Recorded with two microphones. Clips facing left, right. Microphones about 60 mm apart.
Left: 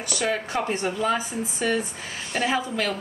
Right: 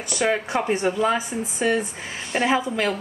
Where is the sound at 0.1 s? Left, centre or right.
Centre.